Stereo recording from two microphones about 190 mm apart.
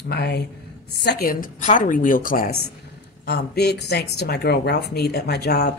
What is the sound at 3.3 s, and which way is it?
A woman's voice, 60° left (ahead or behind).